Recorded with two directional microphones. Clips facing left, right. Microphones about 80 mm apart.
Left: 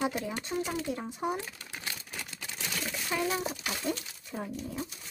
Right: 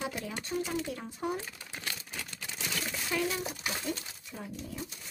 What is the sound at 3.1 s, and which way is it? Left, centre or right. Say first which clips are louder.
Speech: even; centre.